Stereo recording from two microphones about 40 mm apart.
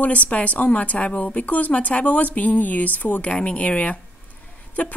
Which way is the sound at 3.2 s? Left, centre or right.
Left.